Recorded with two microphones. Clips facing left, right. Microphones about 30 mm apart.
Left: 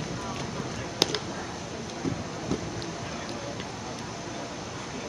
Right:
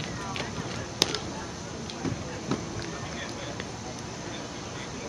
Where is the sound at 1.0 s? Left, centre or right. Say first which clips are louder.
Left 1 dB; centre.